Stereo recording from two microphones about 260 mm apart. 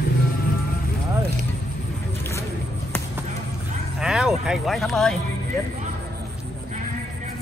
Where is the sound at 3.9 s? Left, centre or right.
Centre.